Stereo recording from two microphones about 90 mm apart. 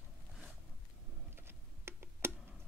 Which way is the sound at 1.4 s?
25° right (ahead or behind).